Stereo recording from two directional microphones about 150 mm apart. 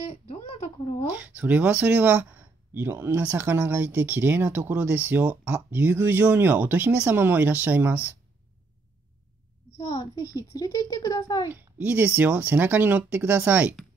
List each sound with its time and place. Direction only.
1.1 s speech: 10° right (ahead or behind)
9.8 s a child's voice: 40° left (ahead or behind)
10.5 s speech: 25° left (ahead or behind)
11.5 s speech: 10° right (ahead or behind)